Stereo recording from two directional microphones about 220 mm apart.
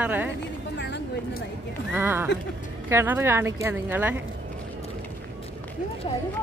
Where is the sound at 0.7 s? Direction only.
50° left (ahead or behind).